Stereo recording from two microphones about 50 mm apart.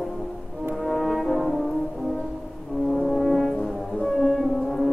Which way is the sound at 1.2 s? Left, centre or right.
Centre.